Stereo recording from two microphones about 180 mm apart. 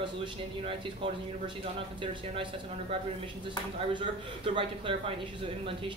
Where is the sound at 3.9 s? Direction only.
30° right (ahead or behind).